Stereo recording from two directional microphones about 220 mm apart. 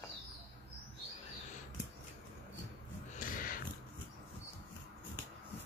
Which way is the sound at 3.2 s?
40° left (ahead or behind).